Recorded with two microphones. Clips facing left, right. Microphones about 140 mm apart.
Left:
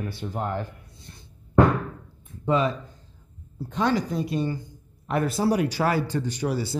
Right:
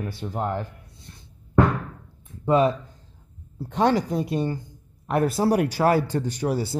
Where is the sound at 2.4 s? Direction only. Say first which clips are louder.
Right 4 dB; 50° right (ahead or behind).